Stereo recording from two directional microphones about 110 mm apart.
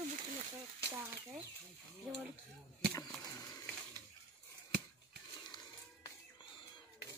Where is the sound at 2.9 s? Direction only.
35° left (ahead or behind).